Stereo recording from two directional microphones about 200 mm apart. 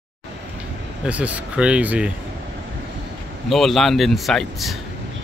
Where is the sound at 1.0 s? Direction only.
5° right (ahead or behind).